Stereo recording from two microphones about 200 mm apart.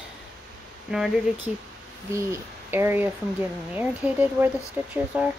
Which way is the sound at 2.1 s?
10° right (ahead or behind).